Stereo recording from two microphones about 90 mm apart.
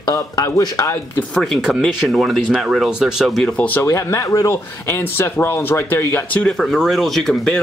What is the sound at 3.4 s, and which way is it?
Speech, 15° left (ahead or behind).